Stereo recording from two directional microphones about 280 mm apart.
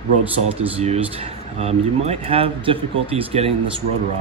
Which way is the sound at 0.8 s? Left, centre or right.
Right.